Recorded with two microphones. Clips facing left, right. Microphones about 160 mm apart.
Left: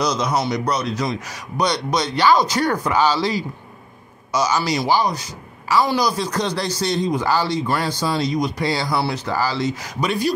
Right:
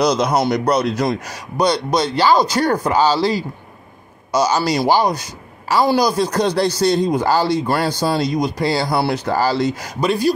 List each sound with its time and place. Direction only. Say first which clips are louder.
0.0 s a man's voice: right 5 dB; 60° right (ahead or behind)
1.6 s speech: right 4 dB; 30° right (ahead or behind)
5.0 s a man's voice: right 4 dB; 60° right (ahead or behind)
5.7 s speech: right 3 dB; 35° right (ahead or behind)
8.9 s a man's voice: right 4 dB; 60° right (ahead or behind)
9.3 s speech: right 5 dB; 40° right (ahead or behind)